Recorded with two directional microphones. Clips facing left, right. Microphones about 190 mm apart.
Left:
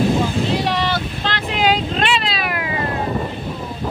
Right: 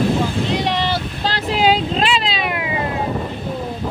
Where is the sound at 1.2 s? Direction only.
35° right (ahead or behind).